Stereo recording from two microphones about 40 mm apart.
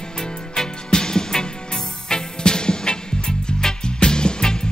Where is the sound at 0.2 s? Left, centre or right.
Centre.